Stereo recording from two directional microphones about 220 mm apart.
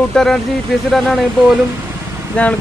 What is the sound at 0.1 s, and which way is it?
Speech, centre (ahead or behind).